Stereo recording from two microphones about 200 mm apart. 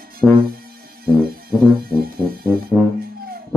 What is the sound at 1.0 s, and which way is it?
Music, 50° right (ahead or behind).